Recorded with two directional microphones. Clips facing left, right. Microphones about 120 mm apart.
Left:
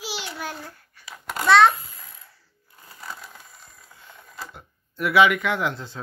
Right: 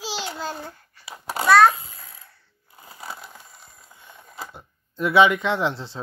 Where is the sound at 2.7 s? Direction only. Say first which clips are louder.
Right 2 dB; 20° right (ahead or behind).